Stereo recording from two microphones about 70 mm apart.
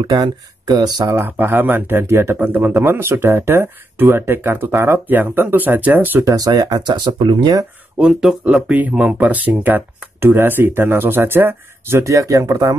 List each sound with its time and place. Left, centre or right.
0.1 s speech: right
1.1 s speech: right
6.2 s speech: right
8.0 s speech: centre
8.6 s speech: right
12.0 s speech: right